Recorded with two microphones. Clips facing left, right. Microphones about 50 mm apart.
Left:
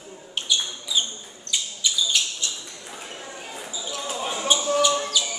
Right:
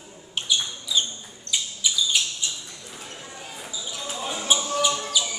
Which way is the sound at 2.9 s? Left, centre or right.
Left.